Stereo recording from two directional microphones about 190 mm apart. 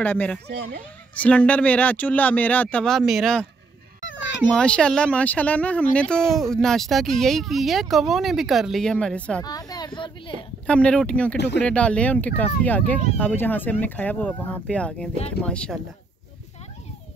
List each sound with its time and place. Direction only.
0.0 s speech: 10° left (ahead or behind)
0.5 s speech: 55° right (ahead or behind)
1.1 s speech: 5° left (ahead or behind)
4.0 s a sound: 80° left
4.5 s speech: 5° left (ahead or behind)
9.4 s speech: 20° left (ahead or behind)
10.7 s speech: 5° left (ahead or behind)
11.3 s speech: 60° left (ahead or behind)
11.6 s speech: 5° left (ahead or behind)